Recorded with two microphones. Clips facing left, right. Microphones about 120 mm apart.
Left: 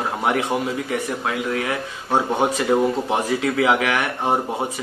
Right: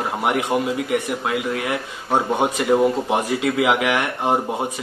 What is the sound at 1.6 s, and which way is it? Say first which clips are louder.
Speech: even; 15° right (ahead or behind).